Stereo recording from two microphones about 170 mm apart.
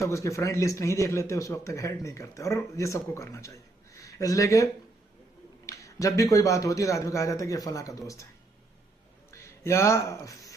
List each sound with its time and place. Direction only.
0.0 s a man's voice: 15° left (ahead or behind)
5.7 s a man's voice: 20° left (ahead or behind)
9.3 s speech: 15° left (ahead or behind)